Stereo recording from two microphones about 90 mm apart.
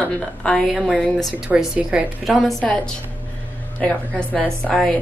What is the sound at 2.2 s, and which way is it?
A woman's voice, centre (ahead or behind).